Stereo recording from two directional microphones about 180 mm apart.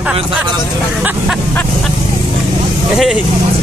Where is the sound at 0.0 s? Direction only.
5° right (ahead or behind).